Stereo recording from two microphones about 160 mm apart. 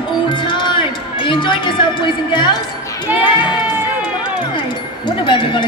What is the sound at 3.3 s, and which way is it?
Speech, 30° left (ahead or behind).